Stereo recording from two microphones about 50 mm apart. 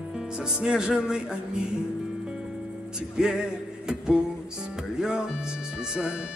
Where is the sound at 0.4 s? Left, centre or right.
Centre.